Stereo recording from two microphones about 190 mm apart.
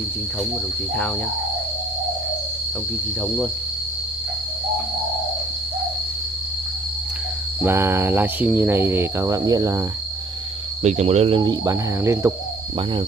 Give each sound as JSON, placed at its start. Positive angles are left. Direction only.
{"t": 7.6, "sound": "cricket", "side_deg": -15}
{"t": 10.8, "sound": "speech", "side_deg": -35}